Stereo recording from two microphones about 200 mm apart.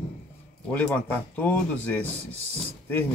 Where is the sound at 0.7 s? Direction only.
5° left (ahead or behind).